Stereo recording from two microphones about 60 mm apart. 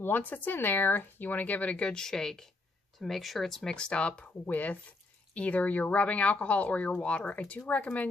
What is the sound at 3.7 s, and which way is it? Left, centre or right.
Speech, centre.